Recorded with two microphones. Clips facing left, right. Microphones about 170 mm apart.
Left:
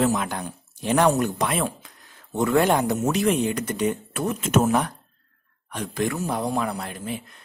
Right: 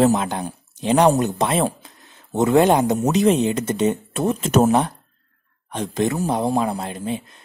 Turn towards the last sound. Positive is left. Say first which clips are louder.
# right 5 dB
turn(degrees=-25)  # may be behind; listen again after turning